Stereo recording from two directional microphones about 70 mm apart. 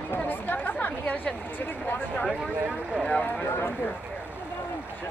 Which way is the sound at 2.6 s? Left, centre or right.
Centre.